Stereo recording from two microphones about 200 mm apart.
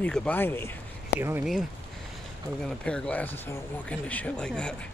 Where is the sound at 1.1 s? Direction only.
10° right (ahead or behind).